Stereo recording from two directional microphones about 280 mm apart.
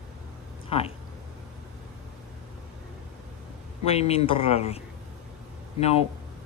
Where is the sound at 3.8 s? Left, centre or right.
Left.